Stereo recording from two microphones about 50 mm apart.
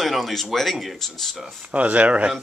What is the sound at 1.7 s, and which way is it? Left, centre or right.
Speech, right.